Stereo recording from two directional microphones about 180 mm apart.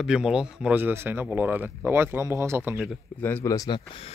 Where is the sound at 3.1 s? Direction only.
10° left (ahead or behind); by 4.1 s 25° left (ahead or behind).